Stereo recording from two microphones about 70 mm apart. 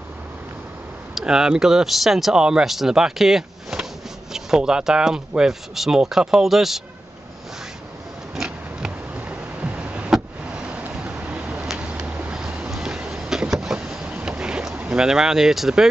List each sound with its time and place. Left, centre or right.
1.1 s speech: centre
8.4 s a sound: centre
10.1 s vehicle: centre
10.9 s a sound: centre
12.7 s vehicle: centre
14.2 s boat: centre
15.0 s speech: centre